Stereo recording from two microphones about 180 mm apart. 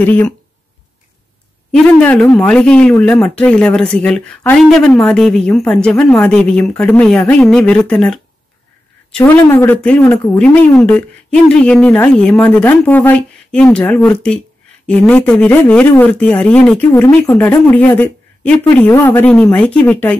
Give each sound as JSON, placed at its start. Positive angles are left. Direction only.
{"t": 0.0, "sound": "speech", "side_deg": 10}
{"t": 1.7, "sound": "speech", "side_deg": 5}
{"t": 9.2, "sound": "speech", "side_deg": 15}